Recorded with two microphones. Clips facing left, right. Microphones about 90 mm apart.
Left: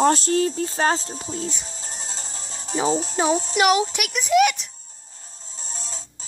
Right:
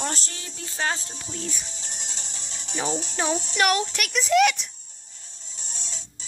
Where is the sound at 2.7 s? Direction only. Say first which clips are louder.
Left 6 dB; 30° left (ahead or behind).